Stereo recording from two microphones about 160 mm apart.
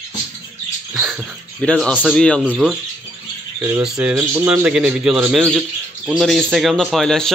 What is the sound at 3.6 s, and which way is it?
A man's voice, 10° right (ahead or behind).